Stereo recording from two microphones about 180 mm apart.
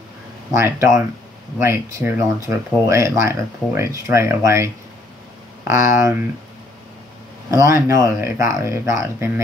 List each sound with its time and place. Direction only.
0.5 s speech: 15° right (ahead or behind)
5.7 s speech: 15° right (ahead or behind)
7.5 s speech: 15° right (ahead or behind)